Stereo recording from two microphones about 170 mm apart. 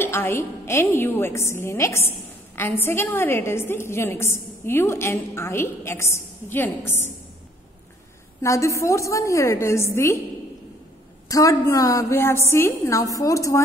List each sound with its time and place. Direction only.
0.0 s a woman's voice: 15° left (ahead or behind)
8.4 s a woman's voice: 15° left (ahead or behind)
11.2 s a woman's voice: 20° left (ahead or behind)